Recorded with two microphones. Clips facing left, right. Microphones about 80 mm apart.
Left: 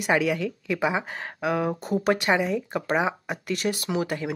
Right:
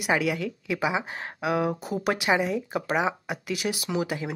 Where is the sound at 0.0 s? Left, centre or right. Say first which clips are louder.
Left 2 dB; centre.